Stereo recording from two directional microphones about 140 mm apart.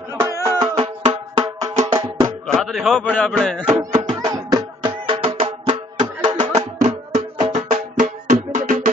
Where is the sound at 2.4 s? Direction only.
Centre (ahead or behind).